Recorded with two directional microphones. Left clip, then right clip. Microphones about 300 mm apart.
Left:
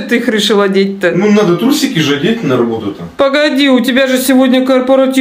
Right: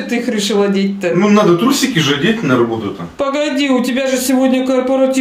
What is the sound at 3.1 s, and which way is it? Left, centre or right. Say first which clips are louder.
A man's voice: left 6 dB; centre.